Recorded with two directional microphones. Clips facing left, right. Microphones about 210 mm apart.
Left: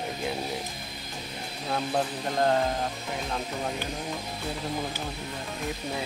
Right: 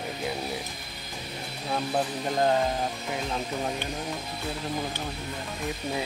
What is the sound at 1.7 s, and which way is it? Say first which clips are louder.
Speech: even; 5° right (ahead or behind).